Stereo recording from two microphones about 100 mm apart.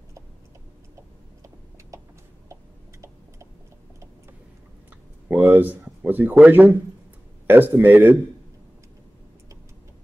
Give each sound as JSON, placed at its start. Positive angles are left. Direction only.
{"t": 5.3, "sound": "speech", "side_deg": -20}